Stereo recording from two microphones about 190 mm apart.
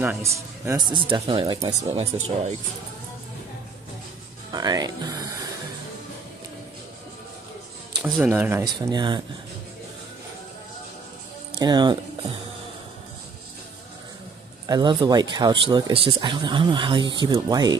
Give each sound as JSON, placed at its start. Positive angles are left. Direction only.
{"t": 0.0, "sound": "a man's voice", "side_deg": -10}
{"t": 0.9, "sound": "speech", "side_deg": -25}
{"t": 2.1, "sound": "speech", "side_deg": -30}
{"t": 4.5, "sound": "speech", "side_deg": -20}
{"t": 7.9, "sound": "speech", "side_deg": -15}
{"t": 11.5, "sound": "speech", "side_deg": -20}
{"t": 14.7, "sound": "speech", "side_deg": -20}